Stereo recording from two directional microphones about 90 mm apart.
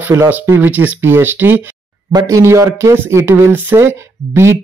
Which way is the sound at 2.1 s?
45° right (ahead or behind).